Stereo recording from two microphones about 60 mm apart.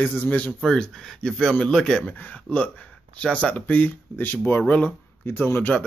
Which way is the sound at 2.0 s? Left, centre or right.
Left.